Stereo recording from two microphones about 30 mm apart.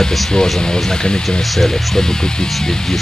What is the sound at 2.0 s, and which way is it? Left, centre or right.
Speech, centre.